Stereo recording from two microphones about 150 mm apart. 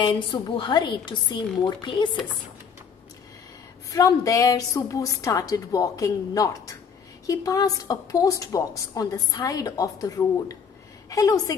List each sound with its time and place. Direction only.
0.0 s a woman's voice: 30° left (ahead or behind)
3.9 s a woman's voice: 20° left (ahead or behind)